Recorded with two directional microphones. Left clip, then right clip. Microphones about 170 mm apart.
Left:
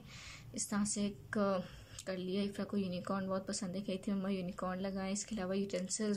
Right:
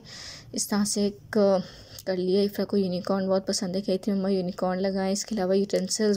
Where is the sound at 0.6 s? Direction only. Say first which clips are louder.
Right 12 dB; 40° right (ahead or behind).